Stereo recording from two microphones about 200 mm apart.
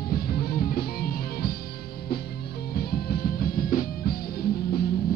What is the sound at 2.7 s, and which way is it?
Music, 50° left (ahead or behind).